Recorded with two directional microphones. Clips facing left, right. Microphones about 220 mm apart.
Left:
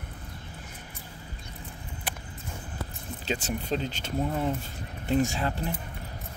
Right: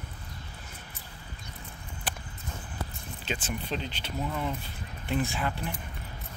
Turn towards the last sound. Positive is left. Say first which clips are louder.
# left 4 dB
turn(degrees=40)  # may be behind; listen again after turning